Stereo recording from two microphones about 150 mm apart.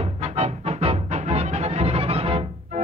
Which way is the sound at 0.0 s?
45° right (ahead or behind).